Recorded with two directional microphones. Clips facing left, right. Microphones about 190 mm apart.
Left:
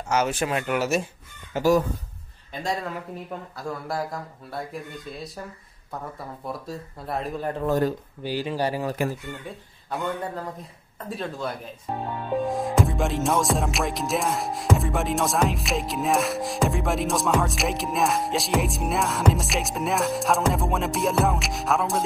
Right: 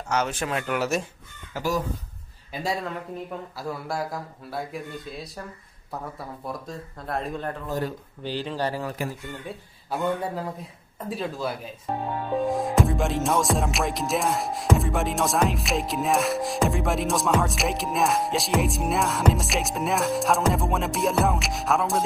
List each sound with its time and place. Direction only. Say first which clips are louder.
0.1 s speech: left 2 dB; 10° left (ahead or behind)
1.5 s speech: left 6 dB; 20° left (ahead or behind)
2.5 s music: even; 5° right (ahead or behind)
6.4 s music: left 2 dB; centre (ahead or behind)
8.2 s speech: left 1 dB; 10° left (ahead or behind)
9.8 s a man's voice: right 2 dB; 10° right (ahead or behind)
11.0 s music: right 1 dB; 5° right (ahead or behind)